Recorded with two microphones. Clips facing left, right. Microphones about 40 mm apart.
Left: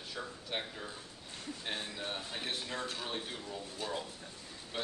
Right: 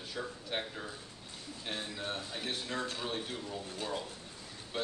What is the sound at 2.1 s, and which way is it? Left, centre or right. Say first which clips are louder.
Speech: right 1 dB; centre.